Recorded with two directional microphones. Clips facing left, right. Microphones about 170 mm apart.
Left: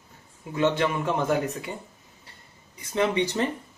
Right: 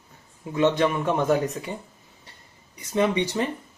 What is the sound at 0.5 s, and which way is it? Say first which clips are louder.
Speech: right 3 dB; 20° right (ahead or behind).